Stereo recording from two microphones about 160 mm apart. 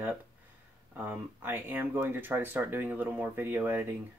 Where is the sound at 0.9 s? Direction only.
10° right (ahead or behind).